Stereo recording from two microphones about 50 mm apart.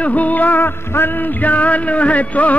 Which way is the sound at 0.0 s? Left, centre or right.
Left.